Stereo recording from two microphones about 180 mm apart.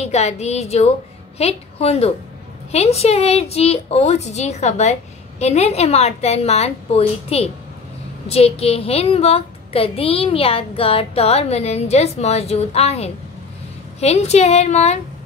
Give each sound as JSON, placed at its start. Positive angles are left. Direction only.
{"t": 0.0, "sound": "a woman's voice", "side_deg": 35}